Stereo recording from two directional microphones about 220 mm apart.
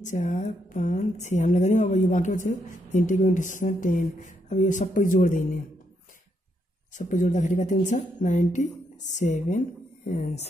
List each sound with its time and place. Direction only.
0.0 s a woman's voice: 35° left (ahead or behind)
6.9 s a woman's voice: 35° left (ahead or behind)